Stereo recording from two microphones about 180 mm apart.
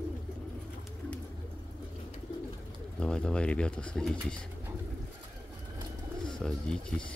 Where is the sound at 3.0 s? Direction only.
5° left (ahead or behind).